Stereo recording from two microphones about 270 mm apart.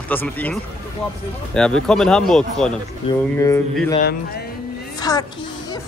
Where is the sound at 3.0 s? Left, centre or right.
Centre.